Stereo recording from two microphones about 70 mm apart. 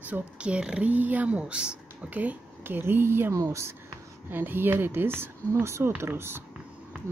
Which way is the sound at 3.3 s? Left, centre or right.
Right.